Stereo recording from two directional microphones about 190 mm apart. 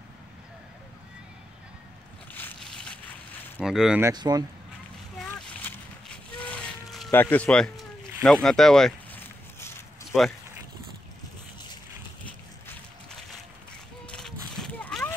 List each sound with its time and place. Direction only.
2.3 s boat: 5° left (ahead or behind)
3.5 s speech: 5° right (ahead or behind)
4.0 s speech: 20° right (ahead or behind)
5.1 s a sound: 5° left (ahead or behind)
7.1 s boat: 10° left (ahead or behind)
10.1 s speech: centre (ahead or behind)
14.0 s a sound: 5° left (ahead or behind)